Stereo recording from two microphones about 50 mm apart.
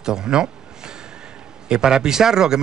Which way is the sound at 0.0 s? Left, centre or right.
Centre.